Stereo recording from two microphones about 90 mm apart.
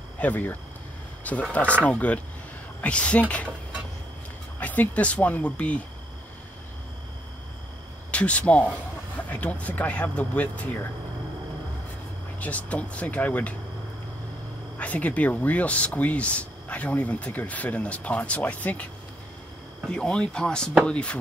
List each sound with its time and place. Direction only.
0.2 s speech: 15° left (ahead or behind)
4.6 s speech: 20° left (ahead or behind)
8.1 s speech: 15° left (ahead or behind)
12.4 s speech: 15° left (ahead or behind)
14.8 s speech: 15° left (ahead or behind)
20.0 s speech: 10° left (ahead or behind)